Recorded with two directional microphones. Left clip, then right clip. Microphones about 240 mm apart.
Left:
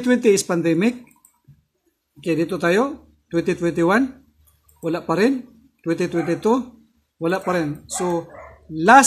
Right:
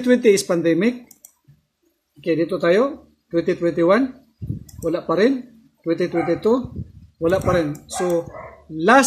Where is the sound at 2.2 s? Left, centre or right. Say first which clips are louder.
Right 1 dB; centre.